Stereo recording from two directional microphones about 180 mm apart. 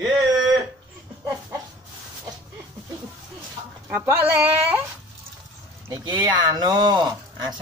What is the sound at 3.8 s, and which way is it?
Speech, 10° right (ahead or behind).